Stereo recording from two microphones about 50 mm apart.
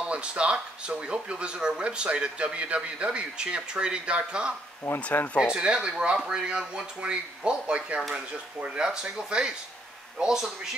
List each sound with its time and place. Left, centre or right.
0.0 s speech: right
5.0 s speech: left
5.5 s speech: centre
8.7 s a man's voice: centre